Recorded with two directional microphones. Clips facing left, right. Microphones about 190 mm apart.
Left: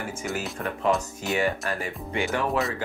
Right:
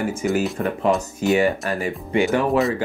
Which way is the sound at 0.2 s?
15° right (ahead or behind).